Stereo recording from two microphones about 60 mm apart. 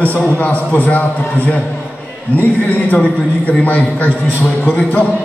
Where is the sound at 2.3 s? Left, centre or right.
Left.